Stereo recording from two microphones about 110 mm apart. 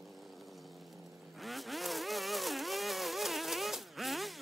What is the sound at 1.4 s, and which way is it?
Vehicle, centre (ahead or behind).